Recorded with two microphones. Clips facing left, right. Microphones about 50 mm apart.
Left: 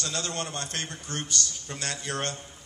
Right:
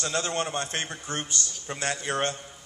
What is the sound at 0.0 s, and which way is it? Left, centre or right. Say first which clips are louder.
A man's voice: right 4 dB; right.